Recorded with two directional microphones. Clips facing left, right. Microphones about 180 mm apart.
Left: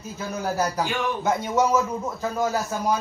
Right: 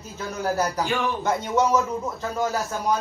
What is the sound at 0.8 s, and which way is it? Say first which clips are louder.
Speech: right 1 dB; 15° left (ahead or behind).